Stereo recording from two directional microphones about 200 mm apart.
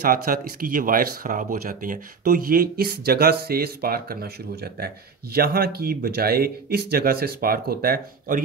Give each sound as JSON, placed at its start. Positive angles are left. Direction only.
{"t": 0.0, "sound": "speech", "side_deg": -45}